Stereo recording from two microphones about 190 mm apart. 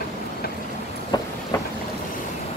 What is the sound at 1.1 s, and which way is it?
Vehicle, 20° left (ahead or behind).